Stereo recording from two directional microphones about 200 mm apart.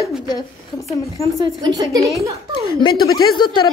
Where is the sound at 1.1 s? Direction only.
20° right (ahead or behind).